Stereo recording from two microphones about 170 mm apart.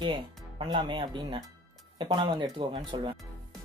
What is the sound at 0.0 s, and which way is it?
Speech, 25° right (ahead or behind).